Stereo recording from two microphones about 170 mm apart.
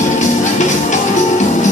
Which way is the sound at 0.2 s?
45° left (ahead or behind).